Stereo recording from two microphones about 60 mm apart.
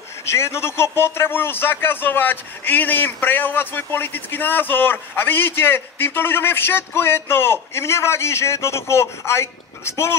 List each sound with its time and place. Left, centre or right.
0.3 s a man's voice: left